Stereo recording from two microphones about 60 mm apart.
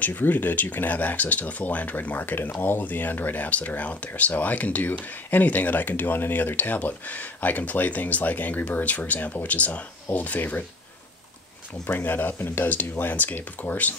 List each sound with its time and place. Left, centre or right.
0.0 s speech: left
12.0 s speech: left